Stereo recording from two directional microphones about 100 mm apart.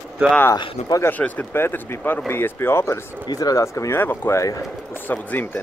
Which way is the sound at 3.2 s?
40° left (ahead or behind).